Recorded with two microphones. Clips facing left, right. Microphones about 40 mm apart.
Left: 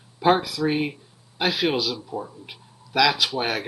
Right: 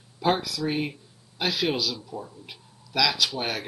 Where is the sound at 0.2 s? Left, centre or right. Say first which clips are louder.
Left 5 dB; left.